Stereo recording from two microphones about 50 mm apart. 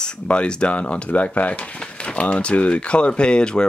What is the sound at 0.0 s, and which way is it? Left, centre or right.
Speech, centre.